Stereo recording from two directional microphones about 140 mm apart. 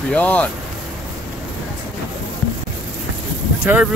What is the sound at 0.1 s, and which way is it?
Speech, 10° left (ahead or behind).